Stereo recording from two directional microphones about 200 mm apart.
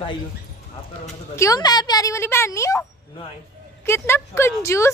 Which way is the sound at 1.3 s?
15° left (ahead or behind).